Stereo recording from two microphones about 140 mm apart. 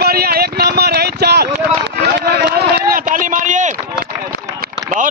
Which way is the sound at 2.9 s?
75° right (ahead or behind).